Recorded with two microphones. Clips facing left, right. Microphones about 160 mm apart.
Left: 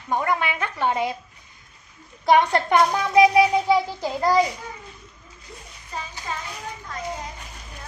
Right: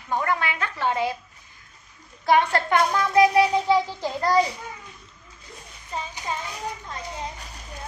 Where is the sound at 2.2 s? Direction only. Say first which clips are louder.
Left 2 dB; 20° left (ahead or behind).